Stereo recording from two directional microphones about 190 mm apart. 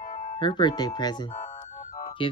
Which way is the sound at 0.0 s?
45° left (ahead or behind).